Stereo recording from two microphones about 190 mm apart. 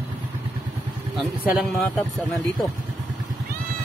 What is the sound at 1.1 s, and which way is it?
Speech, centre (ahead or behind).